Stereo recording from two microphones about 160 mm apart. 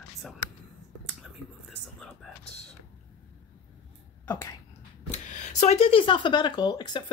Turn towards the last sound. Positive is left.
turn(degrees=25)  # may be behind; listen again after turning